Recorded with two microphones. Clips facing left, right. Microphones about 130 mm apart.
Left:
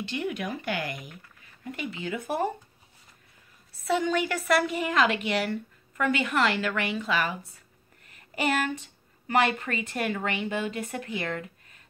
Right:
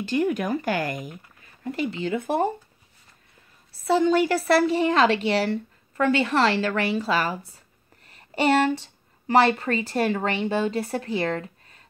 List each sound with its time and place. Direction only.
0.0 s speech: 45° right (ahead or behind); by 2.4 s 25° right (ahead or behind)
3.7 s a woman's voice: 30° right (ahead or behind)